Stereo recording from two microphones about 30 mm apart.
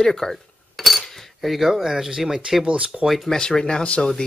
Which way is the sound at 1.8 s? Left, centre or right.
Centre.